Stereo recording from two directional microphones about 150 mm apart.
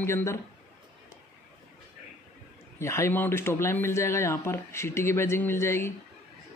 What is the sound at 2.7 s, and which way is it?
Speech, 20° left (ahead or behind).